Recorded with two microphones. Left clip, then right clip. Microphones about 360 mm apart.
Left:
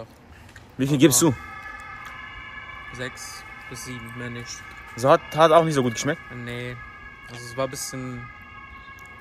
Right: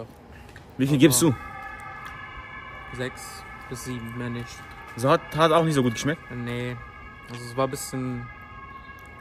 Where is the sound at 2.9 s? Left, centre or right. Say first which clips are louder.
Right 1 dB; centre.